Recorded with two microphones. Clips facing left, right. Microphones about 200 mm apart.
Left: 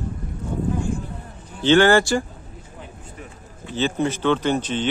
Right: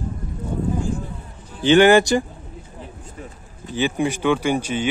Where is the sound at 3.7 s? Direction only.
15° right (ahead or behind).